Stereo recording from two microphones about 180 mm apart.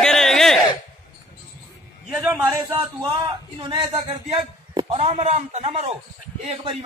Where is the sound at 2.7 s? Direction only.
25° right (ahead or behind).